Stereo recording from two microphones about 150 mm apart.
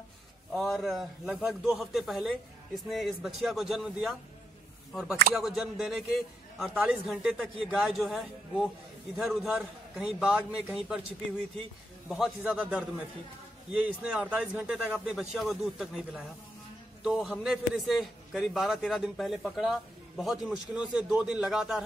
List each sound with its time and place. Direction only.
0.5 s a man's voice: centre (ahead or behind)
12.1 s a man's voice: 5° right (ahead or behind)
13.8 s a man's voice: 5° right (ahead or behind)